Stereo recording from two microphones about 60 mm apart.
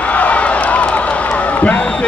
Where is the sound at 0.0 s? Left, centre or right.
Left.